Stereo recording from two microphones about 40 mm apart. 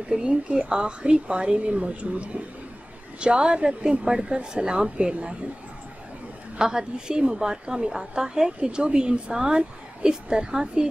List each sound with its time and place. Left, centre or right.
0.2 s a woman's voice: right
6.6 s a woman's voice: centre